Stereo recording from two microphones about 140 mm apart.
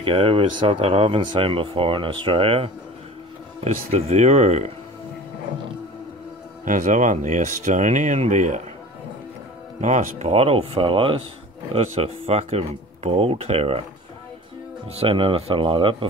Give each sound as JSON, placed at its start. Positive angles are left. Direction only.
{"t": 0.0, "sound": "speech", "side_deg": -40}
{"t": 3.6, "sound": "speech", "side_deg": -55}
{"t": 6.6, "sound": "speech", "side_deg": -65}
{"t": 9.8, "sound": "speech", "side_deg": -55}
{"t": 15.0, "sound": "speech", "side_deg": -40}